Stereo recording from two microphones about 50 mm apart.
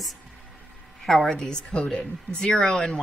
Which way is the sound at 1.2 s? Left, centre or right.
Centre.